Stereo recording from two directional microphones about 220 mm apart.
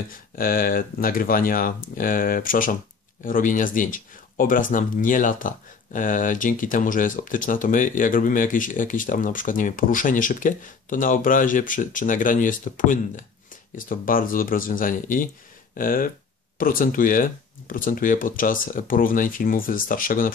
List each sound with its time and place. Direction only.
0.4 s speech: 40° left (ahead or behind)